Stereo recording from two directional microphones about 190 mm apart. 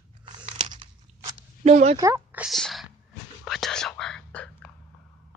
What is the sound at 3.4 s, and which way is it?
Whispering, centre (ahead or behind).